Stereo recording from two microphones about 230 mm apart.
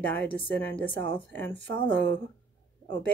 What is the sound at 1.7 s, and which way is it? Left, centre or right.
Speech, right.